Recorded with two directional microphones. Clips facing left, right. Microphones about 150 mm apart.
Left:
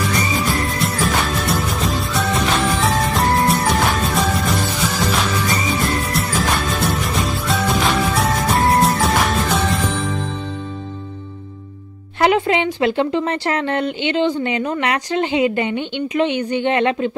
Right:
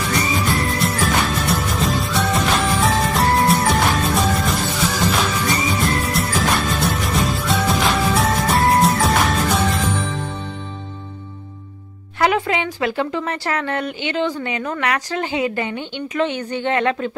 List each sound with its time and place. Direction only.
0.5 s music: centre (ahead or behind)
5.8 s music: centre (ahead or behind)
12.2 s speech: 25° left (ahead or behind)